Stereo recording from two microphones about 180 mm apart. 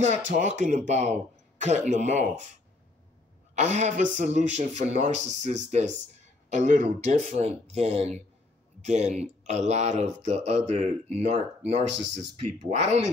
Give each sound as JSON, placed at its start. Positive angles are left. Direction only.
{"t": 0.0, "sound": "speech", "side_deg": -40}
{"t": 3.5, "sound": "speech", "side_deg": -40}